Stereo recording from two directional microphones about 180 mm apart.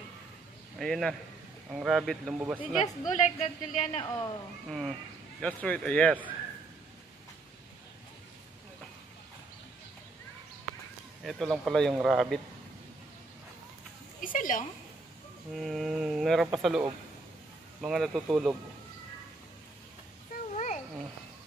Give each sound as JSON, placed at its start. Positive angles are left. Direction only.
{"t": 0.7, "sound": "speech", "side_deg": 0}
{"t": 3.1, "sound": "speech", "side_deg": 40}
{"t": 4.0, "sound": "speech", "side_deg": 20}
{"t": 4.6, "sound": "speech", "side_deg": 0}
{"t": 11.2, "sound": "speech", "side_deg": 0}
{"t": 14.2, "sound": "a sound", "side_deg": 50}
{"t": 15.5, "sound": "speech", "side_deg": 0}
{"t": 17.8, "sound": "speech", "side_deg": 0}
{"t": 20.5, "sound": "cat", "side_deg": 40}